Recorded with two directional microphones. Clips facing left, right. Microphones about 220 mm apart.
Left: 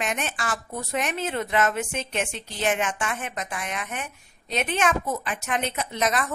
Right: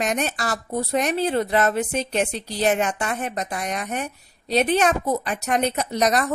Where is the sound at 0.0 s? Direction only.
40° right (ahead or behind).